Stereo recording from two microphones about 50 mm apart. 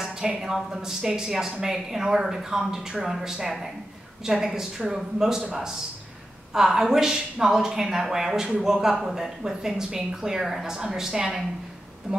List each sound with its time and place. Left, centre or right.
0.0 s a woman's voice: centre
12.1 s speech: right